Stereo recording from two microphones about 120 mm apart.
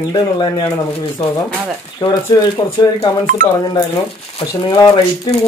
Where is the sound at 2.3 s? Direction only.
30° left (ahead or behind).